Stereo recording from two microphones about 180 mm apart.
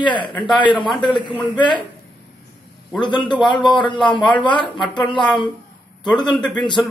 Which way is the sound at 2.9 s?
25° left (ahead or behind).